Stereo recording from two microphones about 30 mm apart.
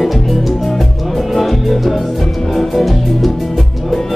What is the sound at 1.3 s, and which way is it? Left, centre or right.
Music, centre.